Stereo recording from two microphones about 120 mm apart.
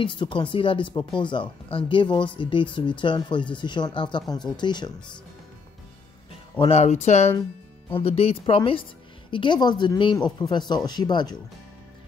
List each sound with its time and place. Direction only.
0.0 s speech: 45° left (ahead or behind)
6.7 s speech: 65° left (ahead or behind)
8.0 s speech: 55° left (ahead or behind); by 11.3 s 35° left (ahead or behind)